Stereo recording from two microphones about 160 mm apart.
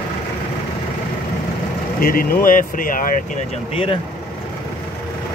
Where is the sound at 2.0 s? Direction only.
65° left (ahead or behind).